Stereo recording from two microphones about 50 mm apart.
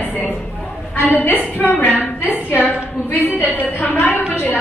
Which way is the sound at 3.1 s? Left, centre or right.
Left.